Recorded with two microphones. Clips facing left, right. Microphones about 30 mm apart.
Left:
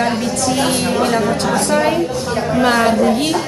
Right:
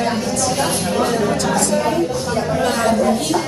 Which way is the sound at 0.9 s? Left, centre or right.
Centre.